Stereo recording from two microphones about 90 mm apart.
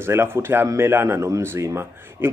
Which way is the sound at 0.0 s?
25° right (ahead or behind).